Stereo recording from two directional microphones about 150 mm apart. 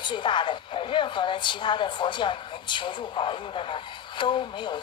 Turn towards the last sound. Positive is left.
turn(degrees=30)  # may be behind; listen again after turning